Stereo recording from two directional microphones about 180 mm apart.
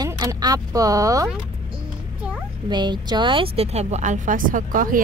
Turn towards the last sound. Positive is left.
turn(degrees=-50)  # may be behind; listen again after turning